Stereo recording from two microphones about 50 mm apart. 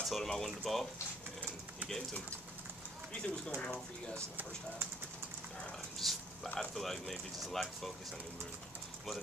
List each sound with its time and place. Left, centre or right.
0.0 s speech: centre
3.1 s speech: left
5.9 s a sound: centre
6.6 s speech: centre